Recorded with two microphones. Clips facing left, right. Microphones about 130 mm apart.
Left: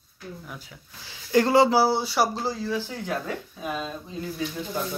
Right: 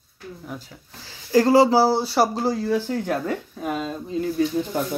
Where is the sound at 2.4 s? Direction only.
60° right (ahead or behind).